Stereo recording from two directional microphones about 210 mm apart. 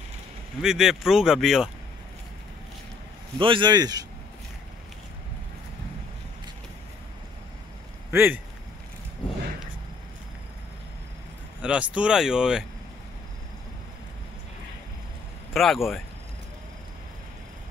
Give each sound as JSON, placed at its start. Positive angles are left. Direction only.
{"t": 0.6, "sound": "speech", "side_deg": -5}
{"t": 3.3, "sound": "speech", "side_deg": -25}
{"t": 8.1, "sound": "speech", "side_deg": -10}
{"t": 11.6, "sound": "speech", "side_deg": -5}
{"t": 15.5, "sound": "speech", "side_deg": 0}